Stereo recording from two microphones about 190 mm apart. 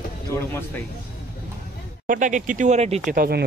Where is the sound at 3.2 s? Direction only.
55° right (ahead or behind).